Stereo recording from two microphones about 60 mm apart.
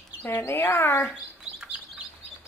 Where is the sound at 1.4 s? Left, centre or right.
Centre.